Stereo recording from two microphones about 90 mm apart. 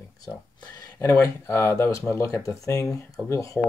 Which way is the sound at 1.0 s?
30° left (ahead or behind).